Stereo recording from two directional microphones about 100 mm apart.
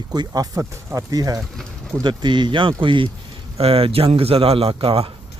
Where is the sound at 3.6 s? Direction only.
75° right (ahead or behind).